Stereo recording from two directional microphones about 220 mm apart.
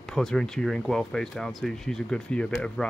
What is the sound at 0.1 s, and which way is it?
Speech, centre (ahead or behind).